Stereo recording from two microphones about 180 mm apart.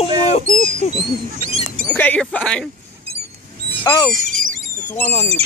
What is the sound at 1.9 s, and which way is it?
Speech, 10° left (ahead or behind).